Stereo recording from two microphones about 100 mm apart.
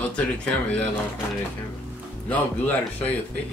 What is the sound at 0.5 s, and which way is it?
Speech, 15° left (ahead or behind).